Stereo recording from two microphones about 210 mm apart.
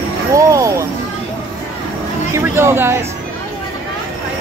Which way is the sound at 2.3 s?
10° right (ahead or behind).